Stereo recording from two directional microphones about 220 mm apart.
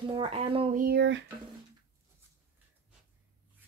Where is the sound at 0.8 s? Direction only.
50° right (ahead or behind).